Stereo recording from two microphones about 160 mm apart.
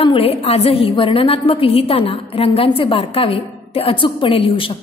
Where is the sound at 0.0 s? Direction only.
35° left (ahead or behind).